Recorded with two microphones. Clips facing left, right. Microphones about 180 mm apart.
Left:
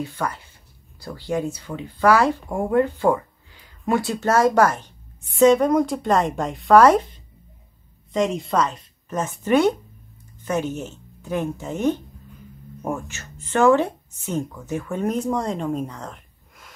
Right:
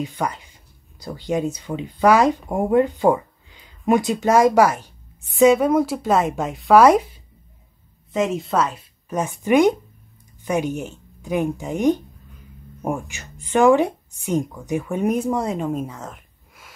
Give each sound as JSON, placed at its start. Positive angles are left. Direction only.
{"t": 0.0, "sound": "a woman's voice", "side_deg": -15}